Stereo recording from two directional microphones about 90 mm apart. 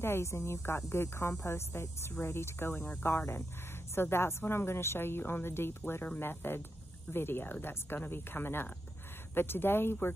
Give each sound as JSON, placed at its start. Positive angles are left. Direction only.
{"t": 0.0, "sound": "speech", "side_deg": 30}